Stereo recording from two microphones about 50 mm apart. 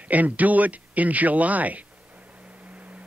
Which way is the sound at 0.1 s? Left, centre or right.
Right.